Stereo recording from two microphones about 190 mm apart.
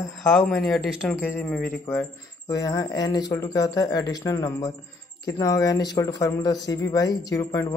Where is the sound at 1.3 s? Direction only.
5° left (ahead or behind).